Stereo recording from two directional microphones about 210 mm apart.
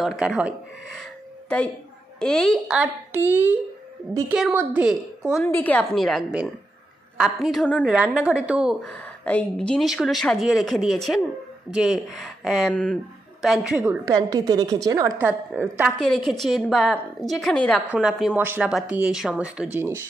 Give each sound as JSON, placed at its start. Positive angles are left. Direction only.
{"t": 0.0, "sound": "a woman's voice", "side_deg": -5}
{"t": 2.1, "sound": "a woman's voice", "side_deg": 5}
{"t": 5.5, "sound": "a woman's voice", "side_deg": 10}
{"t": 14.0, "sound": "a woman's voice", "side_deg": -20}